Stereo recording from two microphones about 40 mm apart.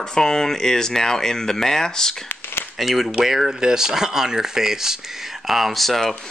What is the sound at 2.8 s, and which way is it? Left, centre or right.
Speech, centre.